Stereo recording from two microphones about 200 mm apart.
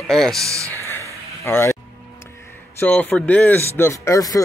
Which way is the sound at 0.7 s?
10° left (ahead or behind).